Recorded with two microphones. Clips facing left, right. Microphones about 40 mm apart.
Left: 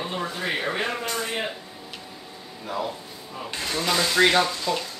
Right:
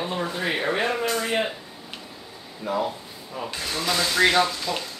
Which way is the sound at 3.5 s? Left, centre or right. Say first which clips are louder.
Left 3 dB; left.